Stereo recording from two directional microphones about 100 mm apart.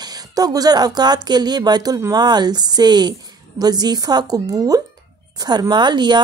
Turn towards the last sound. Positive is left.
turn(degrees=-45)  # may be behind; listen again after turning